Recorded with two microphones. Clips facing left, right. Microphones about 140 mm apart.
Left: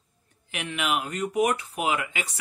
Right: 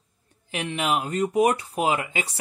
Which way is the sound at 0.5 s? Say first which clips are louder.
Right 3 dB; 35° right (ahead or behind).